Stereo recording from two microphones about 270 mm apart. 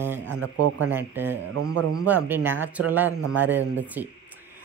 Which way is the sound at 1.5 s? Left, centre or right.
Right.